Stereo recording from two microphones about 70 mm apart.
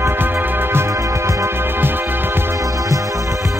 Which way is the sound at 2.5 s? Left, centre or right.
Right.